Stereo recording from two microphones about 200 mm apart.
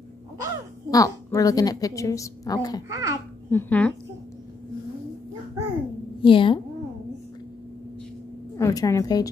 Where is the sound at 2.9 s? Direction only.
15° right (ahead or behind).